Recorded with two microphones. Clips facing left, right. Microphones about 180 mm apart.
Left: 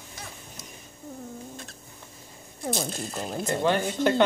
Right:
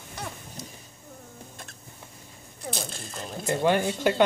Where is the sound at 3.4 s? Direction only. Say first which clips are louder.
Right 2 dB; 10° right (ahead or behind).